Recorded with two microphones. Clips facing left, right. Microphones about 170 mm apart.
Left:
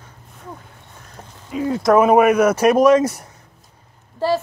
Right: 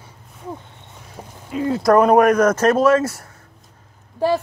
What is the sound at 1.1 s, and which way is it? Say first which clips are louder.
Speech: even; centre (ahead or behind).